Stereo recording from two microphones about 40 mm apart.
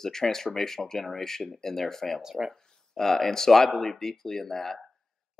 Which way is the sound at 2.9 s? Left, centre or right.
Centre.